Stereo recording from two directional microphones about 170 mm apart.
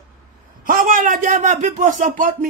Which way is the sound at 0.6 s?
50° right (ahead or behind).